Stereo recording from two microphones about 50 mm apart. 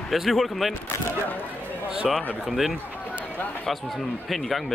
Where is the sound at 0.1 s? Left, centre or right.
Centre.